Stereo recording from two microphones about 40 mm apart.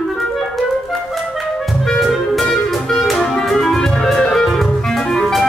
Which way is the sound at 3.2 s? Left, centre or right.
Centre.